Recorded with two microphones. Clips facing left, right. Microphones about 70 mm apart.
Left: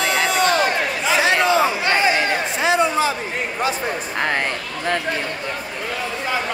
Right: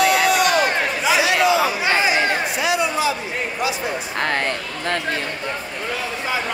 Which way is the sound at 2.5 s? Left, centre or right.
Left.